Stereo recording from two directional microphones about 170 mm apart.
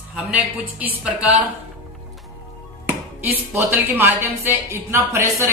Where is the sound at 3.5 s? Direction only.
10° right (ahead or behind).